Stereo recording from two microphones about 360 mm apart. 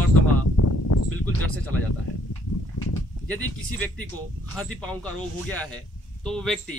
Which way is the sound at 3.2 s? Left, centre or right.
Centre.